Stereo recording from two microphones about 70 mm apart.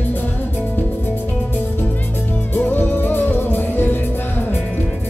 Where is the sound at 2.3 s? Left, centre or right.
Left.